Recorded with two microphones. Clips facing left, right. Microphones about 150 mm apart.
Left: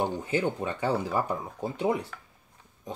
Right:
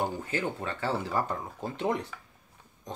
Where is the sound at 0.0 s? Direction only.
20° left (ahead or behind).